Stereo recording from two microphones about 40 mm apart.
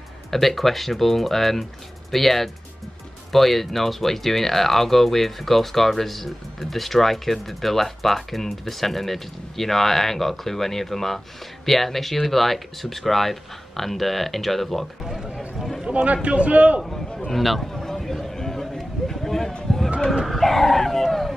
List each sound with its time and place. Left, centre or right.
0.3 s speech: centre
15.0 s speech: centre
15.3 s a sound: centre
15.9 s a man's voice: right
17.3 s run: centre
20.2 s dog: centre